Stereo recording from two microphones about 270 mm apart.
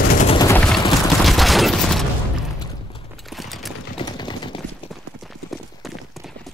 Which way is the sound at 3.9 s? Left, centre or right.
Centre.